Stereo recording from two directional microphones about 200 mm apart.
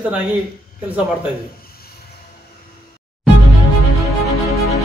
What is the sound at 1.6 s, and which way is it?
Music, 50° left (ahead or behind).